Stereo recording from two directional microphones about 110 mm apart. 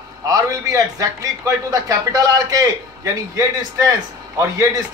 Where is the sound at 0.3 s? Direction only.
35° right (ahead or behind).